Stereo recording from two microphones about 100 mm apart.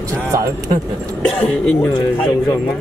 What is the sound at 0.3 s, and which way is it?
Speech, 30° right (ahead or behind).